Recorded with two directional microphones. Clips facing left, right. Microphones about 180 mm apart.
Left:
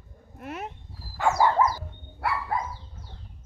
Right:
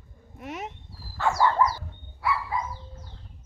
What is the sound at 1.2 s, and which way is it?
Dog, 15° left (ahead or behind).